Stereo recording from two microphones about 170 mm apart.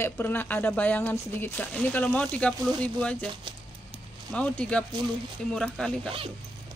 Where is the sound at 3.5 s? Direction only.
30° right (ahead or behind).